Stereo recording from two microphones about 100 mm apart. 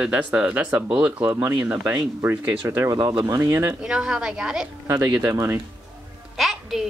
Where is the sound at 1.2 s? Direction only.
25° right (ahead or behind).